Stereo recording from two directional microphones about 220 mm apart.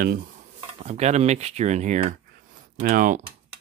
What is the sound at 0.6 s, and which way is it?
Speech, 30° right (ahead or behind).